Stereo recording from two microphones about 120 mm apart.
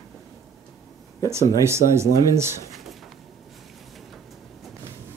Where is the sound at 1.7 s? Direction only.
20° right (ahead or behind).